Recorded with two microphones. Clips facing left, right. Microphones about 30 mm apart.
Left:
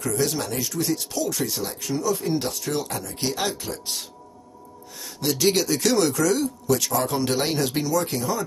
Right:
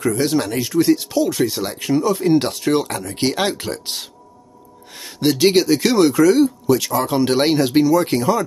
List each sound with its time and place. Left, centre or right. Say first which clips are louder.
0.0 s speech: right 7 dB; right
1.6 s speech: right 8 dB; right
7.9 s speech: right 8 dB; right